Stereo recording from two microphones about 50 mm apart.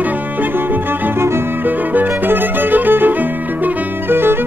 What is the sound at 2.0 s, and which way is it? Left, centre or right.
Music, right.